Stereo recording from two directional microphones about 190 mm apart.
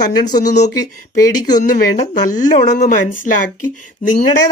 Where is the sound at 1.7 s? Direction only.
40° left (ahead or behind).